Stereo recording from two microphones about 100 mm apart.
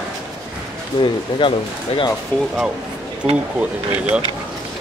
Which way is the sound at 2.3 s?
20° left (ahead or behind).